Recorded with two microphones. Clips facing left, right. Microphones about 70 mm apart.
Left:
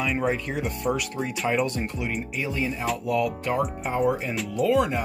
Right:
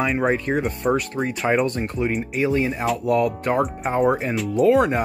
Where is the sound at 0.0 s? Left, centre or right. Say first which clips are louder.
Right 5 dB; right.